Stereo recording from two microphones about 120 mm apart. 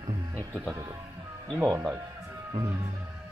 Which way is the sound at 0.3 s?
20° right (ahead or behind).